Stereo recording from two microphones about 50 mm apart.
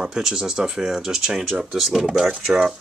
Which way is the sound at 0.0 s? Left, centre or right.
Centre.